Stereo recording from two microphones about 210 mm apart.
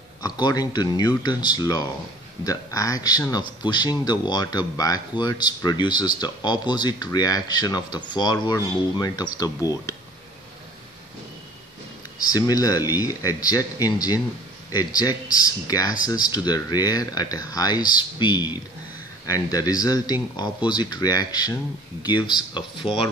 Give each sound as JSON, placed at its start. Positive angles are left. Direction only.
{"t": 0.2, "sound": "speech", "side_deg": 20}
{"t": 12.3, "sound": "speech", "side_deg": 15}